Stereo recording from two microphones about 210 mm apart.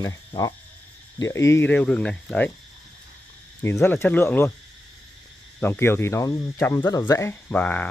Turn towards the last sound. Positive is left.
turn(degrees=5)  # may be behind; listen again after turning